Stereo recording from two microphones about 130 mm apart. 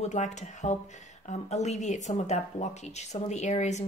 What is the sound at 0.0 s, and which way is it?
Speech, 65° left (ahead or behind).